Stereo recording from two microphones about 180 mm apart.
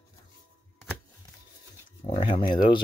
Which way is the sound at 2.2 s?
50° left (ahead or behind).